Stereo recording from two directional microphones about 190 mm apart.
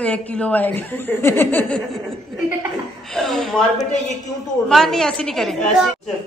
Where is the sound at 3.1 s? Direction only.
Centre (ahead or behind).